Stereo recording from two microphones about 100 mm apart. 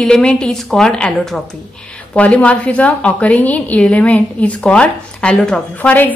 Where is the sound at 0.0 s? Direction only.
10° left (ahead or behind).